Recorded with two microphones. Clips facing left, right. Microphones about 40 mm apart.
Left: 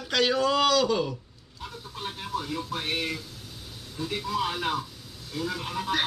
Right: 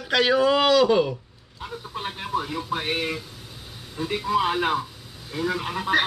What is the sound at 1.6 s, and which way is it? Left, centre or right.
Speech, right.